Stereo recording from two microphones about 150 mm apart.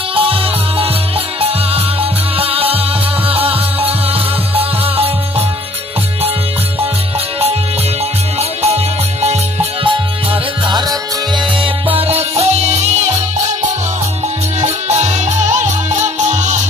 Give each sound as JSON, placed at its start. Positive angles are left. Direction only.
{"t": 0.1, "sound": "music", "side_deg": -40}
{"t": 2.0, "sound": "music", "side_deg": -40}
{"t": 8.4, "sound": "music", "side_deg": -45}
{"t": 10.7, "sound": "music", "side_deg": -30}
{"t": 12.0, "sound": "music", "side_deg": -45}
{"t": 14.9, "sound": "music", "side_deg": -45}